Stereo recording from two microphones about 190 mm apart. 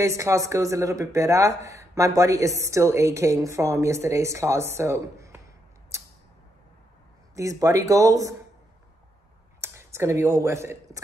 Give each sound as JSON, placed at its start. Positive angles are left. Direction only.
{"t": 0.0, "sound": "speech", "side_deg": -15}
{"t": 7.3, "sound": "speech", "side_deg": -15}
{"t": 9.6, "sound": "speech", "side_deg": -15}